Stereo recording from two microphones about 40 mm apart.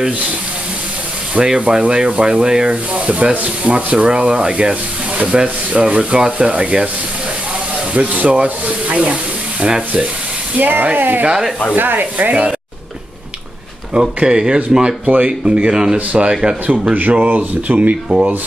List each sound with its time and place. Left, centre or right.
1.3 s rub: right
1.7 s speech: right
2.7 s speech: right
7.9 s speech: right
10.6 s rub: right
13.9 s speech: right
15.0 s rub: right
15.4 s speech: right
17.1 s speech: right